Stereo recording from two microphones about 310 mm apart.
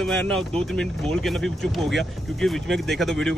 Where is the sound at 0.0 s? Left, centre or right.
Centre.